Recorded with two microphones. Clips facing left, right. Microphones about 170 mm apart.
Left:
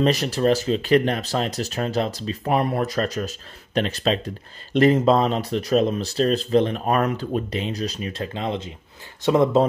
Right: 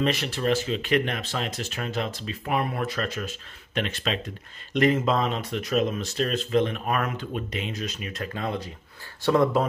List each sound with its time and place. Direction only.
0.0 s speech: 40° left (ahead or behind); by 9.7 s 25° left (ahead or behind)